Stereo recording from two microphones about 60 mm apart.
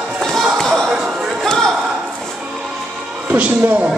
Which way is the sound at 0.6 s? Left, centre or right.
Centre.